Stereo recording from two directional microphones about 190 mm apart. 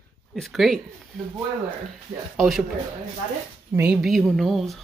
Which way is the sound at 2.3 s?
Centre (ahead or behind).